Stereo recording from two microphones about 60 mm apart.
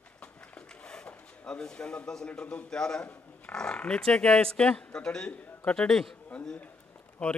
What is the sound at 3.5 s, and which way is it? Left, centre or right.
A man's voice, centre.